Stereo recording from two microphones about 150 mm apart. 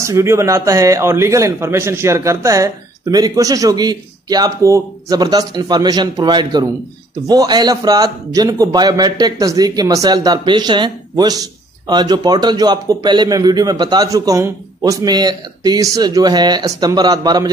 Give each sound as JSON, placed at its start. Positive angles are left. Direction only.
{"t": 0.0, "sound": "a man's voice", "side_deg": -20}